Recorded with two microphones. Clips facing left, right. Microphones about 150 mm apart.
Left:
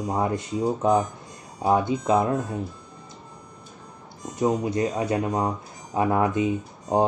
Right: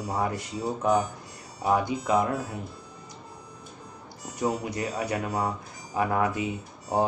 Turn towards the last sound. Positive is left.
turn(degrees=20)  # may be behind; listen again after turning